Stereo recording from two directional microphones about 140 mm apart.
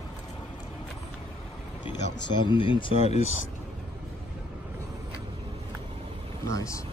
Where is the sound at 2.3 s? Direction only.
35° left (ahead or behind).